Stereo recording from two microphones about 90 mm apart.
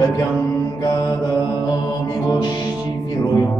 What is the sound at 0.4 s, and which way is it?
Mantra, 30° left (ahead or behind).